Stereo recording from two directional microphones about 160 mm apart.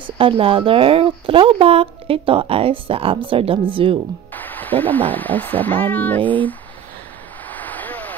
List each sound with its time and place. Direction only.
0.0 s speech: 35° right (ahead or behind)
4.3 s speech: 10° left (ahead or behind)
7.4 s a sound: 10° left (ahead or behind)